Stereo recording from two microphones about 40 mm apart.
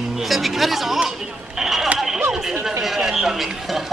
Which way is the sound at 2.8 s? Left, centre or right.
Centre.